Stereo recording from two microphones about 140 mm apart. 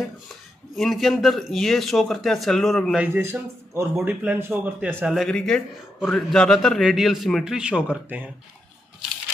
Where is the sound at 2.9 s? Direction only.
15° right (ahead or behind).